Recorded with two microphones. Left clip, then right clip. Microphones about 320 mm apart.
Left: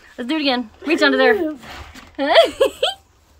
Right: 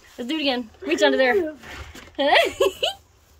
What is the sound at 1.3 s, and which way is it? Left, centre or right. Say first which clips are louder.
Speech: left 2 dB; left.